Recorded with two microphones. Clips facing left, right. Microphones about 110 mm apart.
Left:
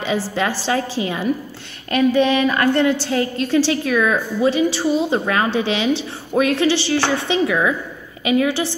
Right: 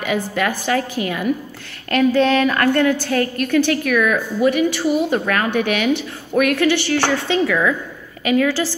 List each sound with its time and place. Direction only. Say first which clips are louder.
0.3 s a woman's voice: right 1 dB; 25° left (ahead or behind)